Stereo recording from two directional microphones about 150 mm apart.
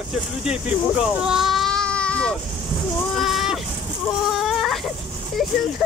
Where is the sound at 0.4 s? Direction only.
5° right (ahead or behind).